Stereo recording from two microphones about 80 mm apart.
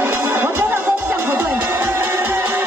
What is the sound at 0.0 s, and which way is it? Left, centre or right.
Music, right.